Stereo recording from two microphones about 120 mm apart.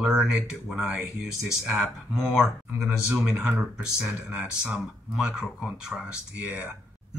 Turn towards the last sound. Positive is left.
turn(degrees=-10)  # may be behind; listen again after turning